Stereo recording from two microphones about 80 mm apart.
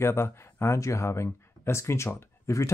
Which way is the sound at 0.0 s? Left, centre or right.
Left.